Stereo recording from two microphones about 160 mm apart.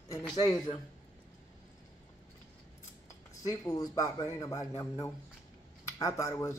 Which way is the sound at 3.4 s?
20° left (ahead or behind).